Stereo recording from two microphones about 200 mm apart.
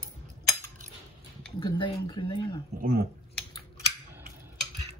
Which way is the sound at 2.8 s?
45° right (ahead or behind).